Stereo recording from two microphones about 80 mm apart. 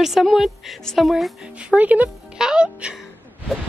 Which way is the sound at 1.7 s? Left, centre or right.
Centre.